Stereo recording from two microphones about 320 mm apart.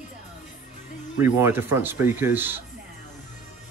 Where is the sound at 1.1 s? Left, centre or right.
Centre.